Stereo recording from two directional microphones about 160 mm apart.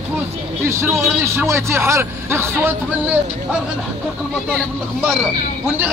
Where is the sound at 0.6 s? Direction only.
15° right (ahead or behind).